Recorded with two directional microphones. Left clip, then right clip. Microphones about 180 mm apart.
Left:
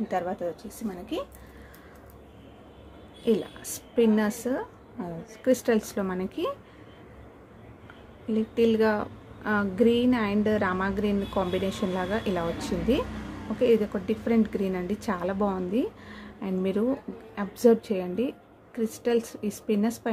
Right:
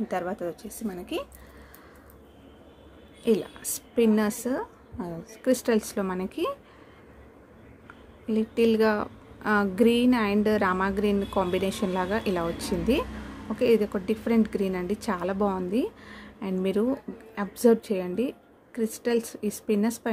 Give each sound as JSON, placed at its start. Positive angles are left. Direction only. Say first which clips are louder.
{"t": 0.1, "sound": "a woman's voice", "louder": "left 2 dB", "side_deg": -20}
{"t": 3.3, "sound": "a woman's voice", "louder": "right 1 dB", "side_deg": -15}
{"t": 8.3, "sound": "a woman's voice", "louder": "right 1 dB", "side_deg": -15}